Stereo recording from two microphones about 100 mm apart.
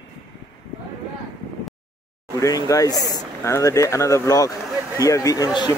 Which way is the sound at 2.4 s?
35° left (ahead or behind).